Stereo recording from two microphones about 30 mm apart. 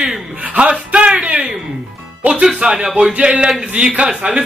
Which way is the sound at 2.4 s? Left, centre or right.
Right.